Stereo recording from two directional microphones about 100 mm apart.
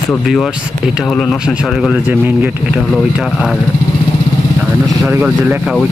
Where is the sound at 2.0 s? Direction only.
15° right (ahead or behind).